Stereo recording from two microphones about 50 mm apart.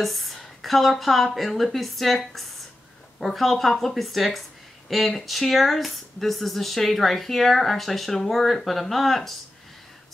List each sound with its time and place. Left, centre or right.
0.0 s speech: centre